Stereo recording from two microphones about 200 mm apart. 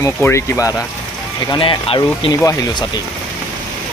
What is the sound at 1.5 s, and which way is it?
Speech, 25° left (ahead or behind).